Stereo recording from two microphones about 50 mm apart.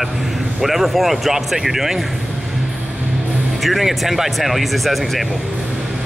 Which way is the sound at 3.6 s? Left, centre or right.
Centre.